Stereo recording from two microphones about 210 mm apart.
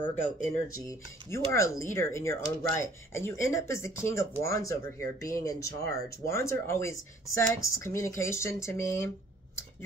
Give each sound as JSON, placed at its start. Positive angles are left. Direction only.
{"t": 0.7, "sound": "speech", "side_deg": 15}